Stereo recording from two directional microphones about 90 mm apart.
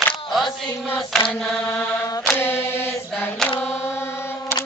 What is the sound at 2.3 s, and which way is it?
Single-lens reflex camera, 25° left (ahead or behind).